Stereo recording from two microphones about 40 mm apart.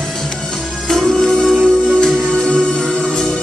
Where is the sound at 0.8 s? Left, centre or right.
Centre.